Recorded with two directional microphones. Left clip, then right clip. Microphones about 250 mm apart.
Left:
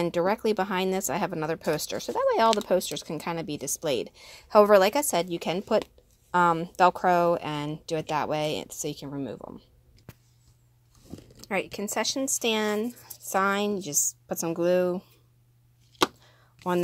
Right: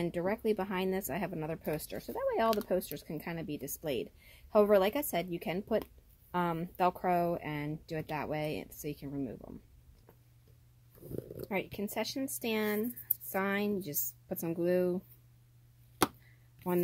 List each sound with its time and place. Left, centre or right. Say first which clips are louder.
0.0 s speech: left 8 dB; left
11.4 s speech: left 8 dB; left